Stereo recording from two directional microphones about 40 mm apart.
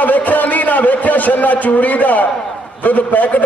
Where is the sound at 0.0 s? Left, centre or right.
Left.